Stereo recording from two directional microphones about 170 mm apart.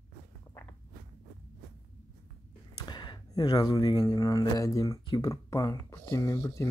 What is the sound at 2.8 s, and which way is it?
Speech, 25° left (ahead or behind).